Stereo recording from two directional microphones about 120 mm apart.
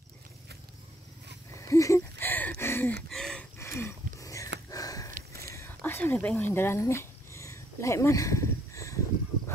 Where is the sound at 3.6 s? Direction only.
20° left (ahead or behind).